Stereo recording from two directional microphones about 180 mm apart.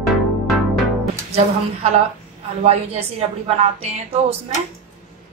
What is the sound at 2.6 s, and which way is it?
Speech, 35° right (ahead or behind).